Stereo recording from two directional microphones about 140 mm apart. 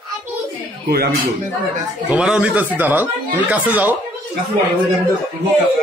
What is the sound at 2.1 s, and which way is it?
Speech, 5° right (ahead or behind).